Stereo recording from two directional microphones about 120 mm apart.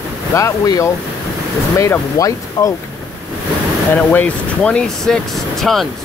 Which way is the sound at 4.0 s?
10° left (ahead or behind).